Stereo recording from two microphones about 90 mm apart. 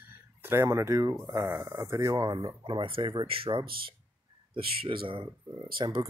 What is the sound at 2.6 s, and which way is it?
Speech, 65° right (ahead or behind).